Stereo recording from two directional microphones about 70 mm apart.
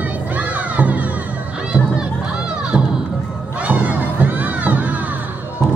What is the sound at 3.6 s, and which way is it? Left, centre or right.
Crowd, right.